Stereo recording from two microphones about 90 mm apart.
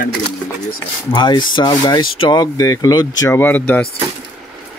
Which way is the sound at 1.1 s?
60° left (ahead or behind).